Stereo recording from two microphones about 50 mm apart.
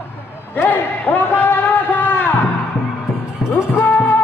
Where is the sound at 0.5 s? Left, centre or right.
Left.